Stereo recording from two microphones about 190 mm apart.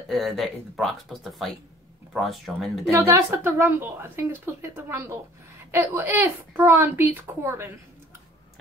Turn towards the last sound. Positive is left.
turn(degrees=-15)  # may be behind; listen again after turning